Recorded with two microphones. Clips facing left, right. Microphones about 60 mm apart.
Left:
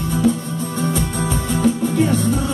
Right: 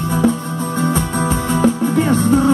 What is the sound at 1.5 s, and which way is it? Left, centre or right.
Music, right.